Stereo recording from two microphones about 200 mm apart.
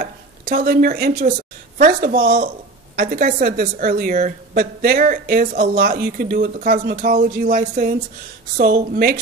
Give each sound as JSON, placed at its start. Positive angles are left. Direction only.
{"t": 0.0, "sound": "a woman's voice", "side_deg": -45}